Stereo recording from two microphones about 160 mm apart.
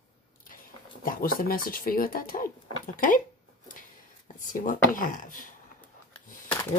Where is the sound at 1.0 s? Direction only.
65° left (ahead or behind).